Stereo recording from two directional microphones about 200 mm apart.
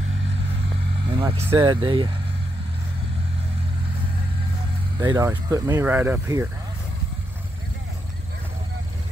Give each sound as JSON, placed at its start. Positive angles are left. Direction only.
{"t": 1.0, "sound": "vehicle", "side_deg": -25}
{"t": 1.4, "sound": "speech", "side_deg": -15}
{"t": 4.9, "sound": "speech", "side_deg": -20}